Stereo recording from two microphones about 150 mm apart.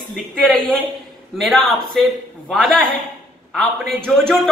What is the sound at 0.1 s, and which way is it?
A man's voice, 5° left (ahead or behind).